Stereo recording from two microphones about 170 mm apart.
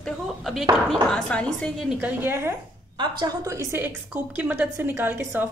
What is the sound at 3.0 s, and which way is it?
A woman's voice, 25° right (ahead or behind).